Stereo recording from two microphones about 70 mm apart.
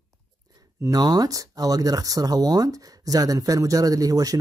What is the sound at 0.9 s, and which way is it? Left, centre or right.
Speech, right.